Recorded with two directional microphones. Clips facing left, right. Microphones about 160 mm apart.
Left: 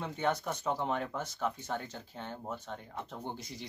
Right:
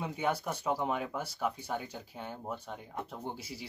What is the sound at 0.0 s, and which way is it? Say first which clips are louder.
Speech: even; 10° right (ahead or behind).